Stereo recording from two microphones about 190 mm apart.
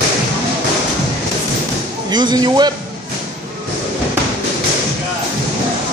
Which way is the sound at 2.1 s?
25° right (ahead or behind).